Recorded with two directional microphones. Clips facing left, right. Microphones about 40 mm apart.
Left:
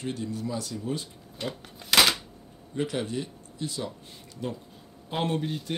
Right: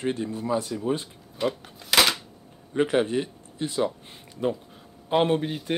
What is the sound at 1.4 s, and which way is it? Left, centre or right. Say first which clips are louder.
Speech: right 8 dB; centre.